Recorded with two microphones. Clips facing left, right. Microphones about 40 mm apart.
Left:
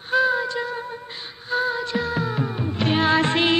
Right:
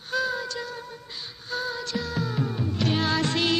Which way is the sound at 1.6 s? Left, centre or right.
Left.